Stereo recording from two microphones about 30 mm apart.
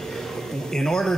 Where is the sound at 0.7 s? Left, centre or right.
Left.